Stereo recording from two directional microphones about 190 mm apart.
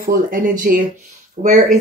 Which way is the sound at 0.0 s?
50° right (ahead or behind).